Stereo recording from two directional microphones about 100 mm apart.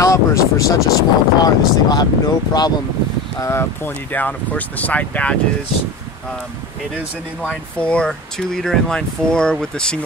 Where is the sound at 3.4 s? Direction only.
25° left (ahead or behind).